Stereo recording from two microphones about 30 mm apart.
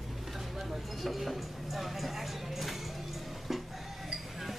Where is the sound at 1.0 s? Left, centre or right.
Centre.